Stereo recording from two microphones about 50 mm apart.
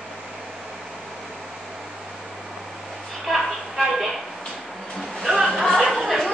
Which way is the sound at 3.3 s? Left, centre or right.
Centre.